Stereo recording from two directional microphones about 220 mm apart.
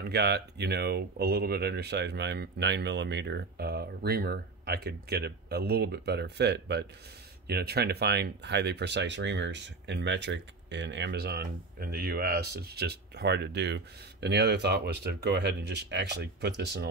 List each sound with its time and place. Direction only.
0.0 s speech: 50° right (ahead or behind)